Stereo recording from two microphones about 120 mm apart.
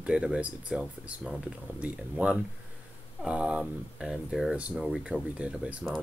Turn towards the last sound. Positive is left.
turn(degrees=-10)  # may be behind; listen again after turning